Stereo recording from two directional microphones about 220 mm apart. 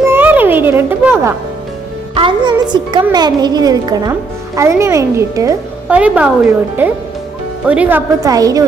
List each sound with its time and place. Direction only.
0.0 s music: 10° right (ahead or behind)
2.1 s a woman's voice: 20° right (ahead or behind)